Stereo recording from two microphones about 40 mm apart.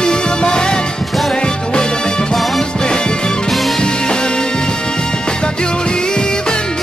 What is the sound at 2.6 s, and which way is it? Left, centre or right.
Music, centre.